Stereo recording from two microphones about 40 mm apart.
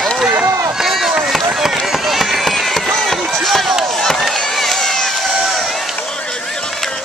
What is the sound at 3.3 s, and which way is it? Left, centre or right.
Chop, centre.